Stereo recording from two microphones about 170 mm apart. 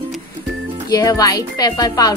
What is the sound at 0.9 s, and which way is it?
A woman's voice, 20° left (ahead or behind).